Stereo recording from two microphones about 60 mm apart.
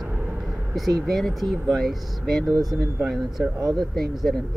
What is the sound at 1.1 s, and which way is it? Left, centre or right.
Speech, centre.